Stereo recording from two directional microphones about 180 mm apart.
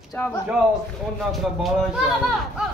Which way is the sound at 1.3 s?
Centre (ahead or behind).